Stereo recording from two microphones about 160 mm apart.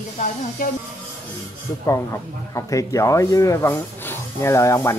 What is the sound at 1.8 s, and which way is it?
Speech, 20° left (ahead or behind).